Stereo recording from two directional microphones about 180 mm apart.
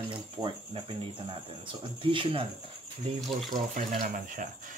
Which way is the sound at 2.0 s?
30° right (ahead or behind).